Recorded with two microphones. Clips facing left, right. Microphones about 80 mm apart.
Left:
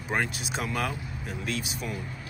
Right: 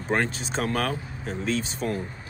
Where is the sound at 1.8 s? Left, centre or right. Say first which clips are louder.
Right 7 dB; right.